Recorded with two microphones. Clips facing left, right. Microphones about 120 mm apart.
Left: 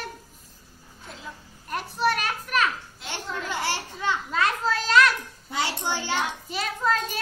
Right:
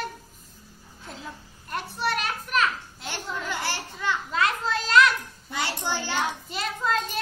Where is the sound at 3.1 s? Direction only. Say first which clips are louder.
Left 1 dB; 20° left (ahead or behind).